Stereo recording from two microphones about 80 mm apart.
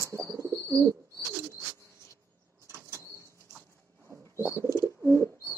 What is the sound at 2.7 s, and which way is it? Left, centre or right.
Vehicle, right.